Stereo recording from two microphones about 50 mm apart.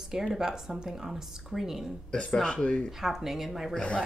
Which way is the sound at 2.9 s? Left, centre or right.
Centre.